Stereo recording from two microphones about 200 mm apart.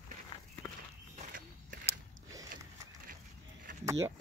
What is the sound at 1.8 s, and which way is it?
Biting, 15° right (ahead or behind).